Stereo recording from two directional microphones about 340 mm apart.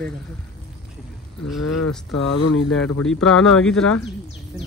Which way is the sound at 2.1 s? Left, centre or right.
Left.